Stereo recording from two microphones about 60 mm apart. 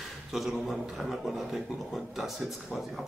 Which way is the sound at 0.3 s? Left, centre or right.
Centre.